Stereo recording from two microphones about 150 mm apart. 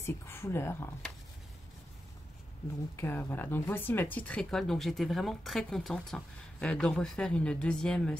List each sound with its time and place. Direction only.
0.0 s speech: 15° left (ahead or behind)
3.0 s speech: 15° left (ahead or behind)